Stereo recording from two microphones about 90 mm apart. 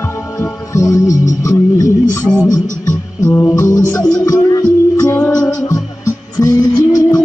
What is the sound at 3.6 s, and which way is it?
Music, 35° left (ahead or behind).